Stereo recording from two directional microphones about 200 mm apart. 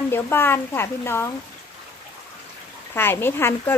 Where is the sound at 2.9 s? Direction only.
10° left (ahead or behind).